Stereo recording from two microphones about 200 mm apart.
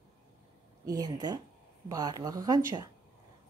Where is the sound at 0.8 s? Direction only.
20° right (ahead or behind).